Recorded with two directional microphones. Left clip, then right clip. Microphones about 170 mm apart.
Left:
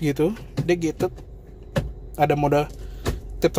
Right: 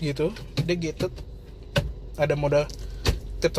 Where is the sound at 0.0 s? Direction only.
40° left (ahead or behind).